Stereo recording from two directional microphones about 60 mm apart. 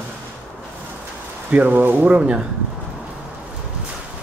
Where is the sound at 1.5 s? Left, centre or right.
Right.